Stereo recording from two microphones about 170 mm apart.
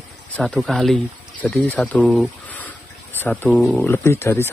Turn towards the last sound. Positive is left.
turn(degrees=15)  # may be behind; listen again after turning